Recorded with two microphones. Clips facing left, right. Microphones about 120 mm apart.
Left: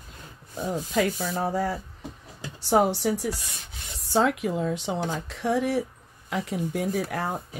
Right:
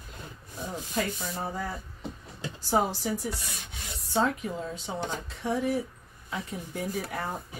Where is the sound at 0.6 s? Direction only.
90° left.